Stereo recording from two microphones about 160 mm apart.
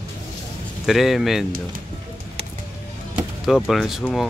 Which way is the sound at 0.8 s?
Centre (ahead or behind).